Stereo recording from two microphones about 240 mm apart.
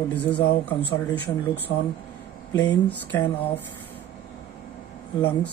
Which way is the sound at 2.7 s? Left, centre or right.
Centre.